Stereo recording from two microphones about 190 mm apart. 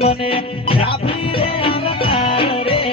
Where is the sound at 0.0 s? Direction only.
30° left (ahead or behind).